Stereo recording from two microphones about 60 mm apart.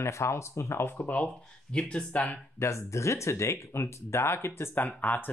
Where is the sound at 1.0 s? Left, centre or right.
Left.